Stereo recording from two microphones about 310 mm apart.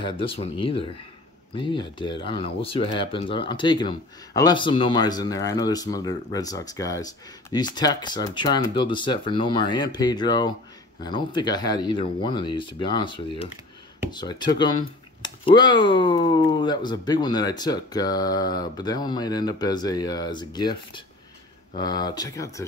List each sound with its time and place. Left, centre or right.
0.0 s speech: centre